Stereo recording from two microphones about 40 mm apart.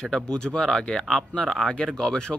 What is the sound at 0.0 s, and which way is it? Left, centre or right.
Speech, centre.